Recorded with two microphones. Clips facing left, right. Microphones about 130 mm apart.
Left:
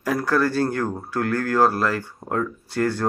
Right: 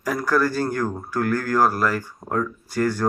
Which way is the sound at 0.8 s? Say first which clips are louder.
Even; 30° left (ahead or behind).